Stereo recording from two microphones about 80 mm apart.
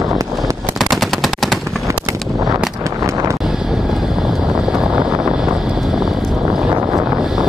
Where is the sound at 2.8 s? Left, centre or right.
Right.